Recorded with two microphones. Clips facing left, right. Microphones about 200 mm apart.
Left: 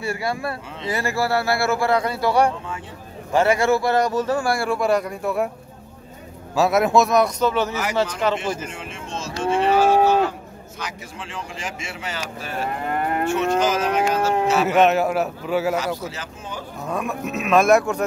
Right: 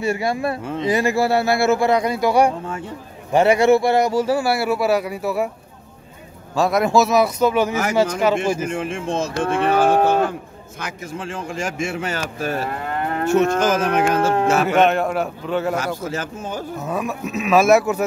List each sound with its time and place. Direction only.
0.0 s speech: 20° right (ahead or behind); by 5.5 s 5° right (ahead or behind)
6.5 s a man's voice: 5° left (ahead or behind)
8.6 s speech: 55° right (ahead or behind)
14.7 s a man's voice: centre (ahead or behind)
16.0 s speech: 50° right (ahead or behind)
16.8 s a man's voice: centre (ahead or behind)